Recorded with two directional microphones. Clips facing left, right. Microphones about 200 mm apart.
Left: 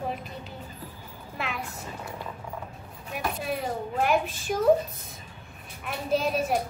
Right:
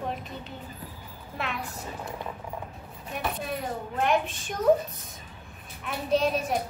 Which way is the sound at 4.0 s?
5° left (ahead or behind).